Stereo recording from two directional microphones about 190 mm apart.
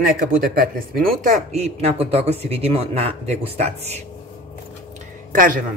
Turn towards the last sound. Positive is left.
turn(degrees=-45)  # may be behind; listen again after turning